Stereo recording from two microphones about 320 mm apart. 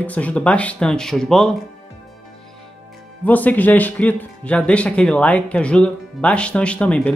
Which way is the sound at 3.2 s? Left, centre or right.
Centre.